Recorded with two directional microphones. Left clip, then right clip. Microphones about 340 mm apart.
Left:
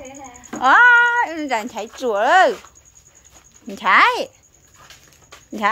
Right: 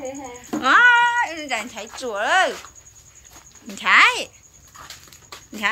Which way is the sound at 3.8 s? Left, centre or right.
Centre.